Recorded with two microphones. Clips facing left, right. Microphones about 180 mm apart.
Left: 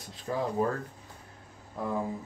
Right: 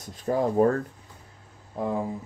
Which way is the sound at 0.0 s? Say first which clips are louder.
Right 7 dB; 45° right (ahead or behind).